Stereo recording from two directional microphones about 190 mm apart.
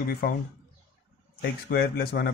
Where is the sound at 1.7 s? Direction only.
55° left (ahead or behind).